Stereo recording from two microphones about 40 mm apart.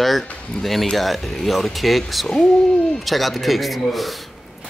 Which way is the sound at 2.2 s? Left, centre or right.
Centre.